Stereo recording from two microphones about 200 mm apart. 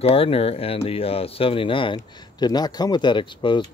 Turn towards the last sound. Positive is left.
turn(degrees=25)  # may be behind; listen again after turning